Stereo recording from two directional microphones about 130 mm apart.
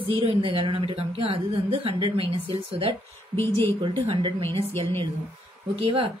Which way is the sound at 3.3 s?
15° left (ahead or behind).